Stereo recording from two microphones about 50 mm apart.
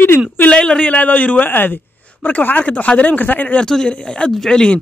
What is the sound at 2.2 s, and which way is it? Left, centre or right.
Speech, left.